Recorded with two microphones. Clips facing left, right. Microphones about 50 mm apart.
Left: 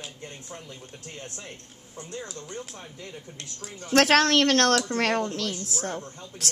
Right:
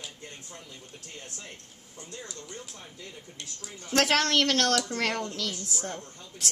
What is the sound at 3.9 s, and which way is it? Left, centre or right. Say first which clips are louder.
Speech: left 5 dB; left.